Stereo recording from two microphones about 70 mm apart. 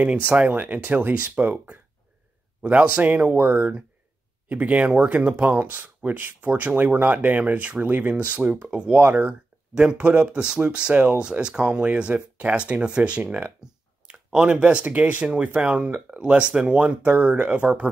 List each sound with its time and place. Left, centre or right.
0.3 s speech: right